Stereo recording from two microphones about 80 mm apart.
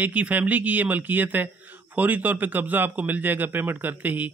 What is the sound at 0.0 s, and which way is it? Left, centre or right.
Speech, centre.